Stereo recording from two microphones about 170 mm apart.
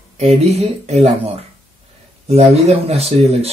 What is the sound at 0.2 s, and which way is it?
Speech, 40° right (ahead or behind).